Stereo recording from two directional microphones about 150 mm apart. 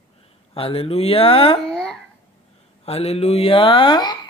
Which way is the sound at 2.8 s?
45° left (ahead or behind).